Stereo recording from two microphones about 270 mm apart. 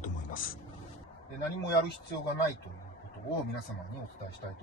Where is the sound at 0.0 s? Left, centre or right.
Left.